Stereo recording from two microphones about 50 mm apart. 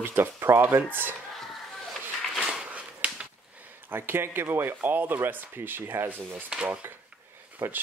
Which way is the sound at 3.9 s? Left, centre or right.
Right.